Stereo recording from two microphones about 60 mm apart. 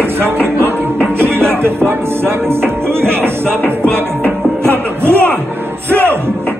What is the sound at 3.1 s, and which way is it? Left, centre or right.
Speech, right.